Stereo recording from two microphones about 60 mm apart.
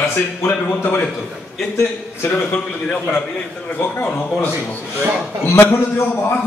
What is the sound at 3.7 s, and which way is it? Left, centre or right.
Speech, left.